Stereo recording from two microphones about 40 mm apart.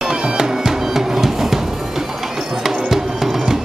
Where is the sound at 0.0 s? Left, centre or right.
Centre.